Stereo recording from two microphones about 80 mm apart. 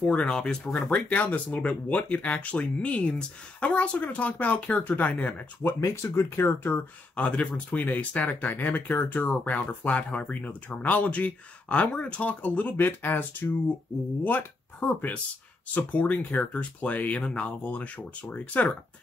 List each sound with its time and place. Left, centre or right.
0.0 s speech: centre; by 6.8 s left
7.2 s speech: centre